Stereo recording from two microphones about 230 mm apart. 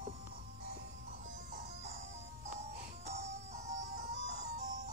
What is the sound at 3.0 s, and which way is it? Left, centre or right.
Music, right.